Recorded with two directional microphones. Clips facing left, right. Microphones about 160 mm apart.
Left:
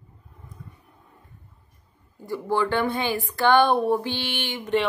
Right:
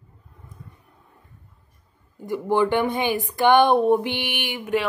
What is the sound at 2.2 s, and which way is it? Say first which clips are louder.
Speech: right 4 dB; 20° right (ahead or behind).